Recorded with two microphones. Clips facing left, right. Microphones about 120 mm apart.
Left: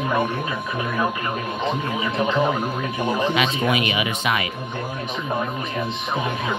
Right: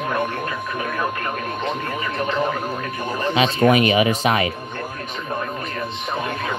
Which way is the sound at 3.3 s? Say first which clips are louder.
Right 5 dB; 35° right (ahead or behind).